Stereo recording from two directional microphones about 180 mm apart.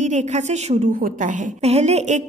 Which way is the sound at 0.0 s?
40° right (ahead or behind).